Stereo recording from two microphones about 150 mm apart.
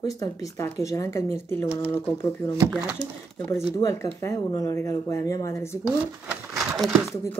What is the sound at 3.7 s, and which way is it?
Speech, 20° left (ahead or behind).